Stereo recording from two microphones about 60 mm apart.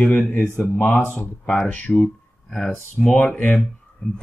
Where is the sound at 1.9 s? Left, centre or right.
Centre.